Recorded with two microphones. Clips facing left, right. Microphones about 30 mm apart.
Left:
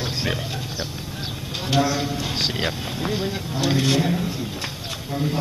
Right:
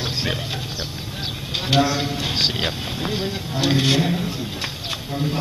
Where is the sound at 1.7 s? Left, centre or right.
Right.